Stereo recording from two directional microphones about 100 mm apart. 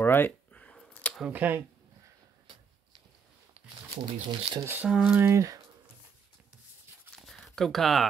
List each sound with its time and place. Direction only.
0.0 s a sound: 20° left (ahead or behind)
1.3 s speech: 20° right (ahead or behind)
3.6 s shuffling cards: 90° right
4.1 s speech: 60° right (ahead or behind)
4.7 s speech: 10° right (ahead or behind)
5.2 s speech: 30° right (ahead or behind)
7.2 s a sound: centre (ahead or behind)